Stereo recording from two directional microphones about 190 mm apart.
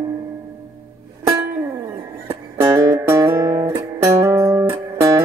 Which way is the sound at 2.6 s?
15° right (ahead or behind).